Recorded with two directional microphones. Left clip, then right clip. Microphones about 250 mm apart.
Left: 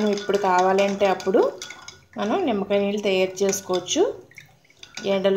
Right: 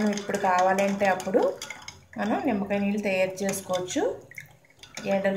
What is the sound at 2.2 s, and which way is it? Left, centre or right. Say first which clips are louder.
A woman's voice: left 4 dB; left.